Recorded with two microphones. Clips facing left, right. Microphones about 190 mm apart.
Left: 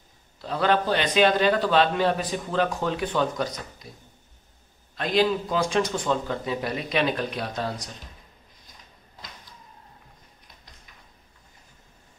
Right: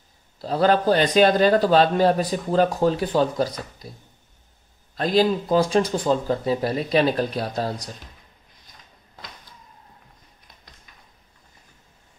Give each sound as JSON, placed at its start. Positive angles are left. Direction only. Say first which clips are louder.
{"t": 0.4, "sound": "a man's voice", "louder": "right 4 dB", "side_deg": -35}
{"t": 4.9, "sound": "a man's voice", "louder": "right 3 dB", "side_deg": -35}